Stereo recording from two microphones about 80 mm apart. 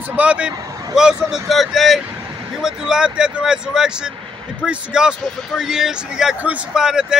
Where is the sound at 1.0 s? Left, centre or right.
Centre.